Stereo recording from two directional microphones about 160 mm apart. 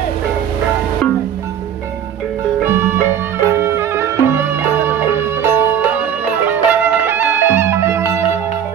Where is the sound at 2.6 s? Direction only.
15° right (ahead or behind).